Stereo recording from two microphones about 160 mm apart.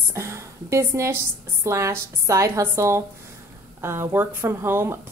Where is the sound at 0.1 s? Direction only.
15° right (ahead or behind).